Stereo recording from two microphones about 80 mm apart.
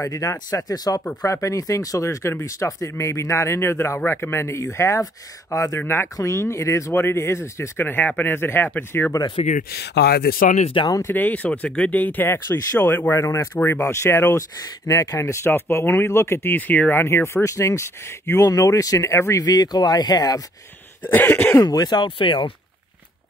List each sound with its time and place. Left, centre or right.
0.0 s speech: left
5.8 s speech: left
6.1 s speech: left
10.9 s speech: left
11.1 s speech: left
13.2 s speech: left
15.4 s speech: left
17.0 s speech: left
18.5 s speech: left
21.1 s speech: left
21.6 s speech: left